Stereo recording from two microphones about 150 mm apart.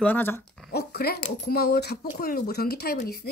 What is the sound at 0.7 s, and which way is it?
Speech, 90° left.